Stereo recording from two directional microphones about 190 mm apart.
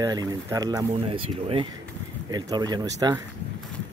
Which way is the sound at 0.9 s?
30° right (ahead or behind).